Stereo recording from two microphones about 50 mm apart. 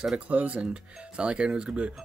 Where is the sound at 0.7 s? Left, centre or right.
Centre.